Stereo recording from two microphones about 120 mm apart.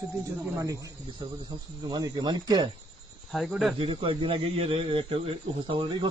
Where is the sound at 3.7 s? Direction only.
45° right (ahead or behind).